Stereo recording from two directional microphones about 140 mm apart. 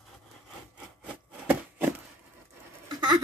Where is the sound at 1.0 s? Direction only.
10° right (ahead or behind).